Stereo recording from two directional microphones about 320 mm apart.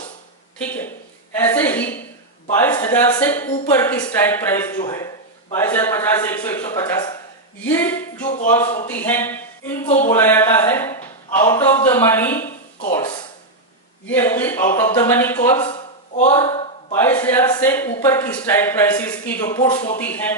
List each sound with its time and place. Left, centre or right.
0.6 s a woman's voice: centre
7.6 s a sound: centre
8.5 s a man's voice: centre
16.2 s speech: centre
16.9 s a man's voice: centre
20.0 s a sound: centre